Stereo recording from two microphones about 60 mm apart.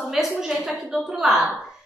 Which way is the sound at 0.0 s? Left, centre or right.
Centre.